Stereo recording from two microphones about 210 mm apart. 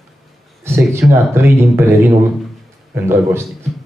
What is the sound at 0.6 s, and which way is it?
Speech, 10° right (ahead or behind).